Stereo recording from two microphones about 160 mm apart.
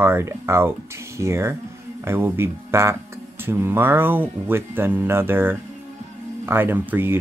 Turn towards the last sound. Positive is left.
turn(degrees=-15)  # may be behind; listen again after turning